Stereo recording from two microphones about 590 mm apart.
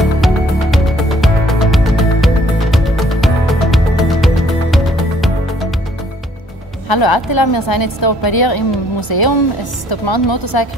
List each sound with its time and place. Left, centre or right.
0.0 s music: centre
6.9 s a woman's voice: left